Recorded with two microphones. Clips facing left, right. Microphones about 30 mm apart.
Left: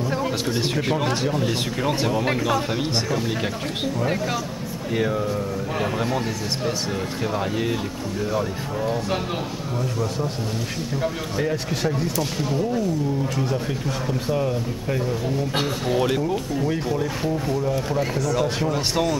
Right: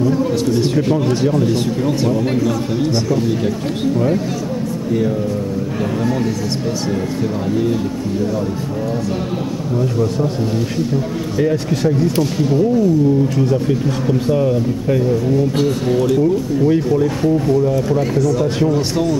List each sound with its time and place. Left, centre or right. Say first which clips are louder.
0.1 s a sound: right 8 dB; left
1.8 s speech: right 5 dB; centre
11.3 s speech: right 7 dB; centre
16.2 s speech: right 9 dB; centre